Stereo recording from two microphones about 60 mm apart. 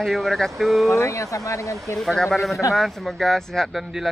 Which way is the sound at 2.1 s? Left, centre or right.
Centre.